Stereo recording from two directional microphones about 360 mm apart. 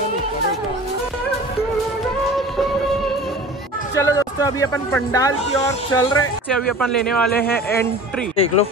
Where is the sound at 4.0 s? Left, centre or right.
Centre.